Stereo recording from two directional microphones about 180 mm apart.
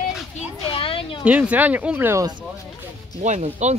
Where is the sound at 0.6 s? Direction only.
30° left (ahead or behind).